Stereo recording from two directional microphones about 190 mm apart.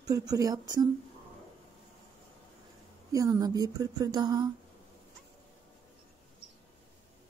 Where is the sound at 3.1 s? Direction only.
20° right (ahead or behind).